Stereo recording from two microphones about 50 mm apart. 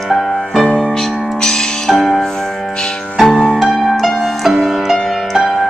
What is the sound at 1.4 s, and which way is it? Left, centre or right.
Music, centre.